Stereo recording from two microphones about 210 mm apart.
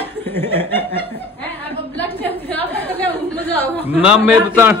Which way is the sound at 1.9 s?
10° left (ahead or behind).